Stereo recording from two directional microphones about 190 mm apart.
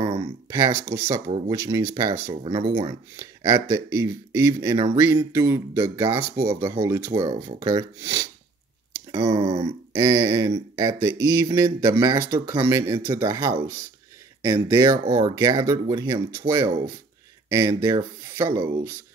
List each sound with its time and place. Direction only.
0.5 s speech: 15° right (ahead or behind)
9.4 s speech: 35° right (ahead or behind)
9.9 s speech: 20° right (ahead or behind)